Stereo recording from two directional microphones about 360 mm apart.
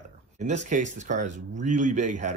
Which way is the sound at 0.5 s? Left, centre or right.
Centre.